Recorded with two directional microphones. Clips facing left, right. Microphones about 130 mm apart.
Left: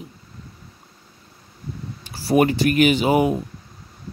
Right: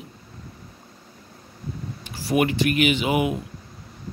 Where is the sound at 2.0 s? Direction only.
35° left (ahead or behind).